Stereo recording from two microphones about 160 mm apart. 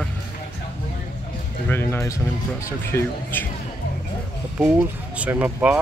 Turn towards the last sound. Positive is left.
turn(degrees=-10)  # may be behind; listen again after turning